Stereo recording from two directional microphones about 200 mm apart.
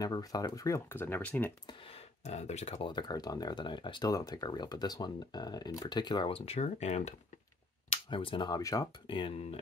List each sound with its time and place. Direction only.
0.0 s speech: 20° left (ahead or behind)
1.7 s speech: 30° left (ahead or behind)